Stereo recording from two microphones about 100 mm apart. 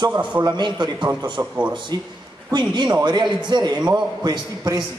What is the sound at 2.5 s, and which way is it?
A man's voice, 50° right (ahead or behind).